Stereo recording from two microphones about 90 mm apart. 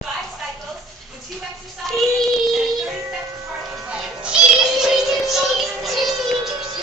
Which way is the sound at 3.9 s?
10° right (ahead or behind).